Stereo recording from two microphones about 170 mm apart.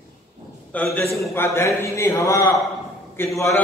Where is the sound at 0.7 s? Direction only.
10° left (ahead or behind).